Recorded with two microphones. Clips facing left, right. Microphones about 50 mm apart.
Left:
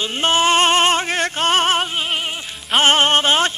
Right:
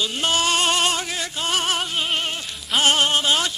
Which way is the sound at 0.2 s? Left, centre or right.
Left.